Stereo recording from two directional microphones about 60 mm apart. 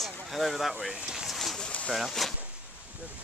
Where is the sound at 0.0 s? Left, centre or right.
Centre.